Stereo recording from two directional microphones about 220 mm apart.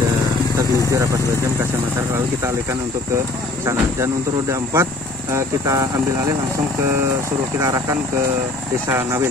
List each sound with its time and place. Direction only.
3.6 s speech: 15° right (ahead or behind)
7.6 s speech: 15° right (ahead or behind)